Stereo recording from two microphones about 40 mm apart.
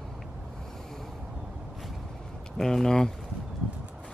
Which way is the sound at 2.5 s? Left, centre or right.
Centre.